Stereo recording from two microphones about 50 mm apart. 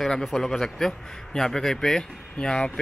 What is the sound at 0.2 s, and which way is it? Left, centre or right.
A man's voice, centre.